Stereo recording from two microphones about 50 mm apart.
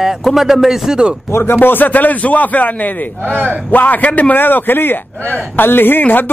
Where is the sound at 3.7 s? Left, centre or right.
Left.